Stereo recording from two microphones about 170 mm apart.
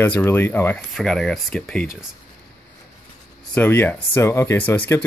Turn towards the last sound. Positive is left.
turn(degrees=10)  # may be behind; listen again after turning